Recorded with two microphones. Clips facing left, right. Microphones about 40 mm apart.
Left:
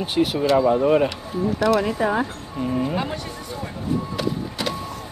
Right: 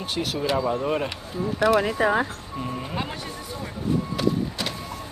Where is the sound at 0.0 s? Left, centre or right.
Centre.